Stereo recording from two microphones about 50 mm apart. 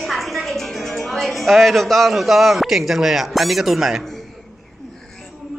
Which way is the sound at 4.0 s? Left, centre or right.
Centre.